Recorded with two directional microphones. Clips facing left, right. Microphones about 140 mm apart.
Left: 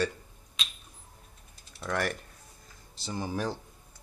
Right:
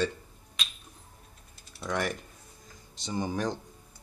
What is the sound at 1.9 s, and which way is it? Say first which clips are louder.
Speech: even; centre (ahead or behind).